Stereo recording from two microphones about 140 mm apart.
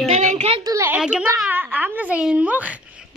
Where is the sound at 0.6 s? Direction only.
25° right (ahead or behind).